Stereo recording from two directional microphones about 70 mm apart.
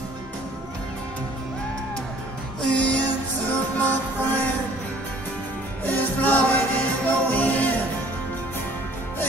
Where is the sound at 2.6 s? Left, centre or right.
Centre.